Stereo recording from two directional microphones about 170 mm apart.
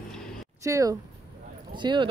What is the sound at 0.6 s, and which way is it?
Speech, 20° right (ahead or behind).